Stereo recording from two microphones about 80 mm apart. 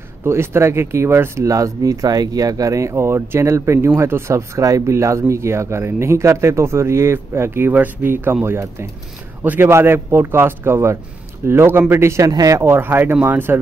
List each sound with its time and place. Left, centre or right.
0.2 s a man's voice: right
12.3 s speech: right
12.6 s a man's voice: right